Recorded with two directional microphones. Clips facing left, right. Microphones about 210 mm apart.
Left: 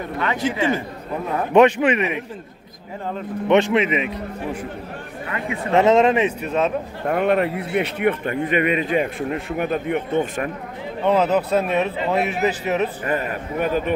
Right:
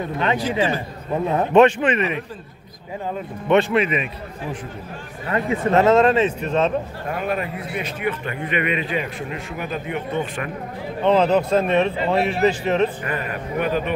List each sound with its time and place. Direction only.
0.4 s a man's voice: 20° left (ahead or behind)
1.5 s speech: 10° left (ahead or behind)
3.4 s speech: 15° left (ahead or behind)
5.3 s speech: 40° right (ahead or behind)
5.8 s speech: 20° left (ahead or behind)
7.1 s a man's voice: 65° left (ahead or behind)
11.1 s speech: 5° left (ahead or behind)
13.0 s speech: 40° left (ahead or behind)